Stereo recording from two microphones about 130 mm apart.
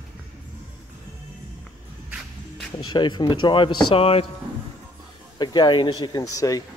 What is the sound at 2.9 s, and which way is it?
Speech, 35° left (ahead or behind).